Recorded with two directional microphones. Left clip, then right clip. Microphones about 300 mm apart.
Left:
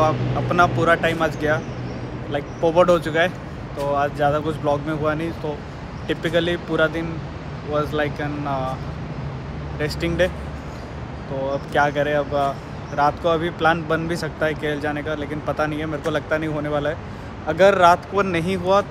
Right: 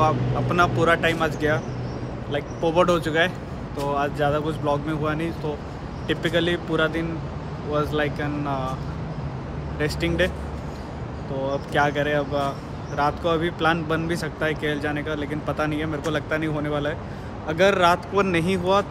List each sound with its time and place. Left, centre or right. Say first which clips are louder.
0.0 s speech: left 2 dB; centre
9.8 s speech: left 2 dB; centre
11.4 s speech: left 2 dB; centre